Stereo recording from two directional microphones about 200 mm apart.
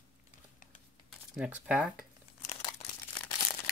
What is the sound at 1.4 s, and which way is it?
Speech, 5° right (ahead or behind).